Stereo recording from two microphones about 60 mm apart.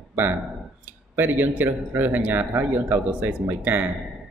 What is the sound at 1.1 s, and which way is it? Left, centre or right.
Speech, right.